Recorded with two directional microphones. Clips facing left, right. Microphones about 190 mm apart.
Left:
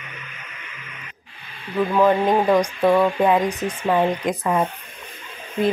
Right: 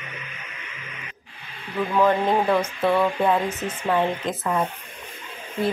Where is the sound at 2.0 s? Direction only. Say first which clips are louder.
Left 2 dB; 15° left (ahead or behind).